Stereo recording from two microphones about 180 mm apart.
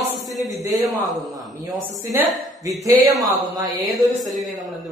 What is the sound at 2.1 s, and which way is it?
Speech, 20° right (ahead or behind).